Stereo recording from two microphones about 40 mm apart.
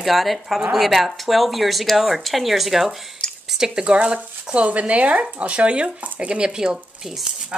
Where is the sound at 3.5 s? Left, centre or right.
Centre; by 6.4 s right.